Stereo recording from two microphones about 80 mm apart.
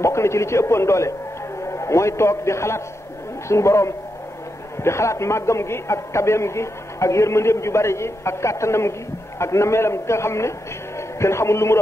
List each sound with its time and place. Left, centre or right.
0.0 s a man's voice: left